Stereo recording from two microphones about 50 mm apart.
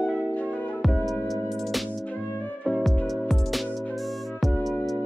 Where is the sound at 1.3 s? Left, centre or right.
Centre.